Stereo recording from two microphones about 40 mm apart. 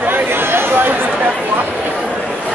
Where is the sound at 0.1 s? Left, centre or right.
Right.